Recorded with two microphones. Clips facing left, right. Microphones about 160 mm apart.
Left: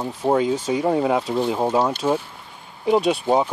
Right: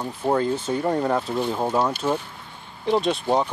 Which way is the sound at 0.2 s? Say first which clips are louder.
Left 3 dB; 10° left (ahead or behind).